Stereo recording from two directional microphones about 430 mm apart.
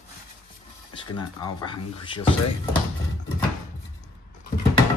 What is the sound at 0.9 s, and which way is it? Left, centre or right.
Speech, centre.